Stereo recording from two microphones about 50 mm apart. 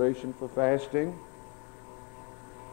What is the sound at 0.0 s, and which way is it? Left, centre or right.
Speech, centre.